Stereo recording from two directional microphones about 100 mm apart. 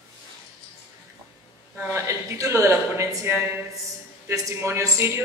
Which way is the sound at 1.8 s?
30° right (ahead or behind).